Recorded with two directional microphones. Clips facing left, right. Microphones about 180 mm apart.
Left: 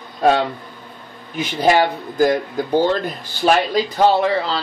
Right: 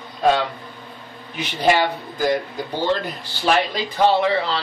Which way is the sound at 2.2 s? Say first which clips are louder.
Left 5 dB; 45° left (ahead or behind).